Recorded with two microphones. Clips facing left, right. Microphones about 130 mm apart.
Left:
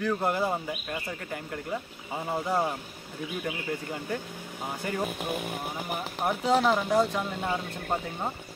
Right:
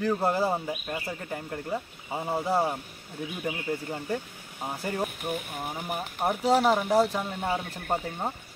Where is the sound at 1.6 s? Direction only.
20° right (ahead or behind).